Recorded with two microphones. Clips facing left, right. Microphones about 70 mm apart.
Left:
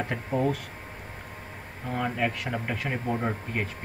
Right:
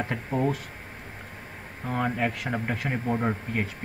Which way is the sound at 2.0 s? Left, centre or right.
Right.